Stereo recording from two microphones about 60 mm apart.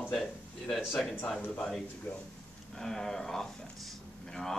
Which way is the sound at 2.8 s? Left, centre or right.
Centre.